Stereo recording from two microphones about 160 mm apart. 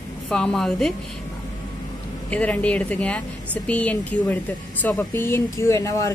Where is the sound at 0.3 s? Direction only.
5° left (ahead or behind).